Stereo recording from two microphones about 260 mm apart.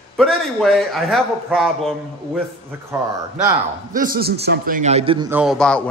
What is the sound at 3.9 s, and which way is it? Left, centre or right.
A man's voice, right.